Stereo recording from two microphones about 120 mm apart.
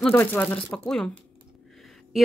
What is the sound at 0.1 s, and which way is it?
Speech, 15° left (ahead or behind).